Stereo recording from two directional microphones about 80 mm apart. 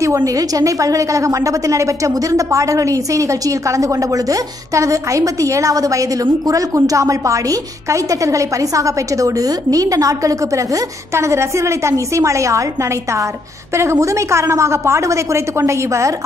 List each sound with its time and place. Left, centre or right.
0.0 s a woman's voice: right
13.7 s a woman's voice: right